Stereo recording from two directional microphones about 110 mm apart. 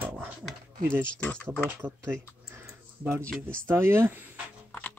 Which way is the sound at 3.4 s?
20° right (ahead or behind).